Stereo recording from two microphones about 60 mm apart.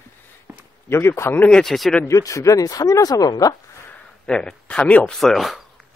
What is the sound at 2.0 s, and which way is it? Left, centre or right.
Speech, left.